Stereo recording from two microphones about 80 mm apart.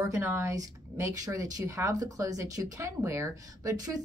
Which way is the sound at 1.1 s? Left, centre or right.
Right.